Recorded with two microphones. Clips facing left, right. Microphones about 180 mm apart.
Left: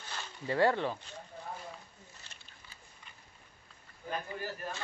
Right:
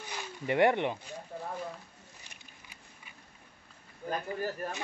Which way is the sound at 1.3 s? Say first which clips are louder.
Right 8 dB; 70° right (ahead or behind).